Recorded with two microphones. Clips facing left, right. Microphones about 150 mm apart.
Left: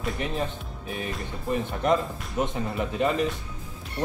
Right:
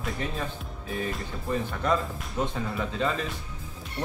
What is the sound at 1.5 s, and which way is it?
Speech, 20° left (ahead or behind).